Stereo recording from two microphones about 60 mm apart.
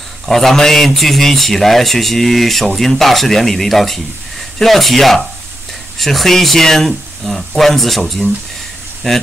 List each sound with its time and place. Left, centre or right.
0.3 s speech: centre